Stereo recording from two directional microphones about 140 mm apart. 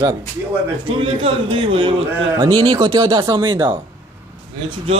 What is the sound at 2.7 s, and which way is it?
Speech, 25° right (ahead or behind).